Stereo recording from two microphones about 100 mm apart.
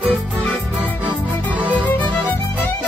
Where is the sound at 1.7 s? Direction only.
15° left (ahead or behind).